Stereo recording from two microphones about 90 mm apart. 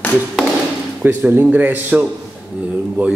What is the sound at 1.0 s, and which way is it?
Speech, 20° right (ahead or behind).